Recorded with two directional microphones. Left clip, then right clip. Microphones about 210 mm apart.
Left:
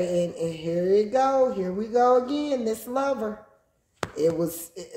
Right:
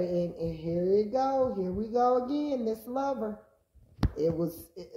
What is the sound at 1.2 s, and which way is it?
Speech, 40° left (ahead or behind).